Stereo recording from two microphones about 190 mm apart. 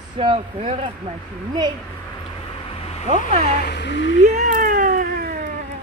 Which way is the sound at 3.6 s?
65° left (ahead or behind).